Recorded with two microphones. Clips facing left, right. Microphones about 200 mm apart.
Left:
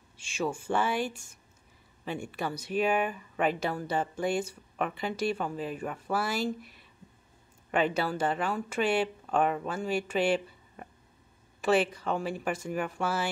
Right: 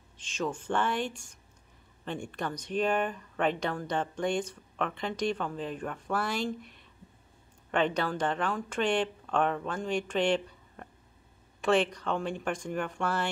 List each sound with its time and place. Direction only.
0.2 s speech: 10° left (ahead or behind)